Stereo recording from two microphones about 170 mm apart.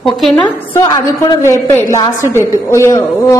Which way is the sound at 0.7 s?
25° left (ahead or behind).